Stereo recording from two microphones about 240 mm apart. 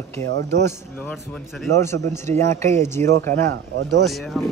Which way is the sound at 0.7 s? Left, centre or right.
Centre.